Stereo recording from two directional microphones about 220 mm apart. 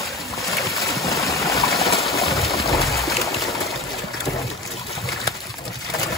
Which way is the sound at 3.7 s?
Centre (ahead or behind).